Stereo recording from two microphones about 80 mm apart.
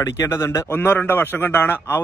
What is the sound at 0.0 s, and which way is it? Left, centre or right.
A man's voice, left.